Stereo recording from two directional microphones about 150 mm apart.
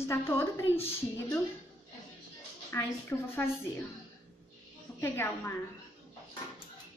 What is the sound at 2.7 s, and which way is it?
Speech, 20° left (ahead or behind).